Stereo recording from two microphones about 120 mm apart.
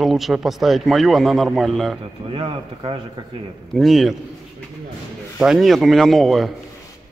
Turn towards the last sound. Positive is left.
turn(degrees=0)  # may be behind; listen again after turning